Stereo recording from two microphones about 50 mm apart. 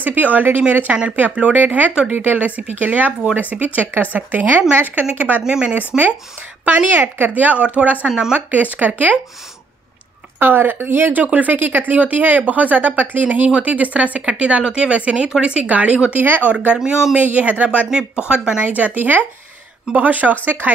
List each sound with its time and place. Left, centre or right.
0.0 s speech: right
5.9 s speech: centre
6.6 s speech: right
10.4 s speech: right
11.1 s speech: right
17.2 s speech: right
17.8 s speech: centre
18.7 s speech: right